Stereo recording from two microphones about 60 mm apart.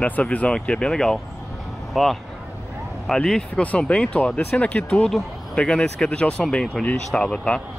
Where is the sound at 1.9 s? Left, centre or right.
Centre.